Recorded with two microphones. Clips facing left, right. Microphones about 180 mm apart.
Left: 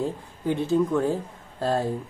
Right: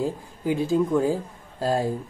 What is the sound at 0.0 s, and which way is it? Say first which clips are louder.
Speech: right 1 dB; 5° right (ahead or behind).